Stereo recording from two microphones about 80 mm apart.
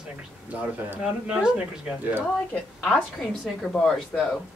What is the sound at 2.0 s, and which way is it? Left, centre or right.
Speech, right.